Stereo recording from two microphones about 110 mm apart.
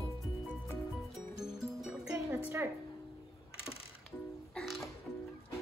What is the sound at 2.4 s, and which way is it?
Speech, 20° right (ahead or behind).